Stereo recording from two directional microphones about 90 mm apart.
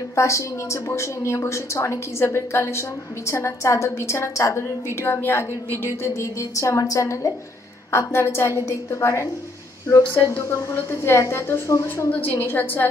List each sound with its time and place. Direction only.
0.1 s a woman's voice: 35° left (ahead or behind)